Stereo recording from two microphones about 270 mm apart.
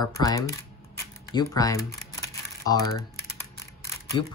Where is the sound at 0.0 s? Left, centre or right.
Centre.